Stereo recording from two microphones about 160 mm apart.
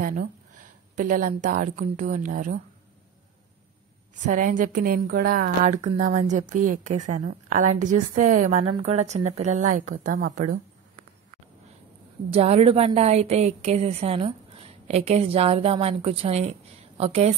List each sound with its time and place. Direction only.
0.9 s a woman's voice: 55° right (ahead or behind)
4.3 s a woman's voice: 55° right (ahead or behind)
5.6 s a woman's voice: 45° right (ahead or behind)
10.0 s a woman's voice: 60° right (ahead or behind)
12.3 s a woman's voice: 40° right (ahead or behind)